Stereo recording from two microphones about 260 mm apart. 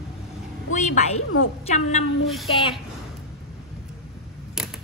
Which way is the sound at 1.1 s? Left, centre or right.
Left.